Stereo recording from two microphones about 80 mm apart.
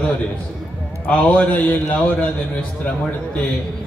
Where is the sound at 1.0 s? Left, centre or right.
Centre.